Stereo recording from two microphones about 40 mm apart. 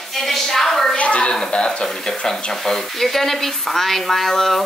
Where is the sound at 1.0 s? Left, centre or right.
Left.